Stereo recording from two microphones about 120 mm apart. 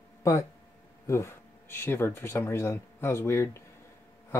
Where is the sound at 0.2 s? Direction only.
25° left (ahead or behind).